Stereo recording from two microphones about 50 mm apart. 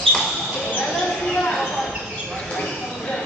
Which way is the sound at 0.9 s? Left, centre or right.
Centre.